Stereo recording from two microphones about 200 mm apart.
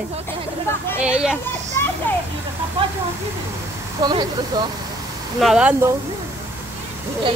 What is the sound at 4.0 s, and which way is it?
Speech, 20° right (ahead or behind).